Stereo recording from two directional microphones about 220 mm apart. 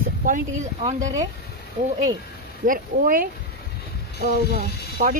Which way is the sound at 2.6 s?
40° right (ahead or behind).